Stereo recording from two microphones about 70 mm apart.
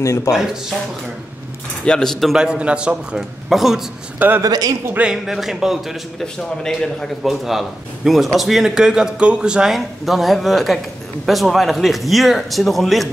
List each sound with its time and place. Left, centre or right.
0.0 s speech: left
0.3 s a man's voice: centre
1.9 s a man's voice: centre
2.3 s a man's voice: centre
3.4 s a man's voice: centre
4.4 s a man's voice: right
5.1 s a man's voice: centre
6.2 s a man's voice: centre
7.2 s a man's voice: centre